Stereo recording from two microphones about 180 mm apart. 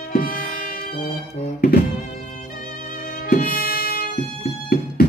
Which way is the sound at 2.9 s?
50° left (ahead or behind).